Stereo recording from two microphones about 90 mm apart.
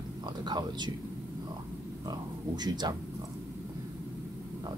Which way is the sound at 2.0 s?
50° right (ahead or behind).